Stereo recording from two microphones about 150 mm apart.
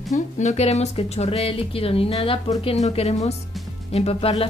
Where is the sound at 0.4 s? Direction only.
50° left (ahead or behind).